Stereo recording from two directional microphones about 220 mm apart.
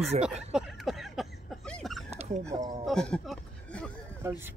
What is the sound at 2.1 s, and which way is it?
Dog, 30° right (ahead or behind).